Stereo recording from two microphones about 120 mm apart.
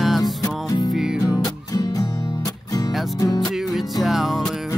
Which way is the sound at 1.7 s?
30° left (ahead or behind).